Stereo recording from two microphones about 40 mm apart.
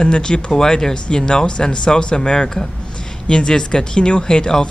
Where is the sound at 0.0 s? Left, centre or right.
Left.